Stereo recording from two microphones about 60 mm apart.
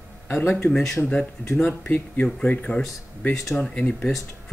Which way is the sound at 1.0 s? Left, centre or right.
Centre.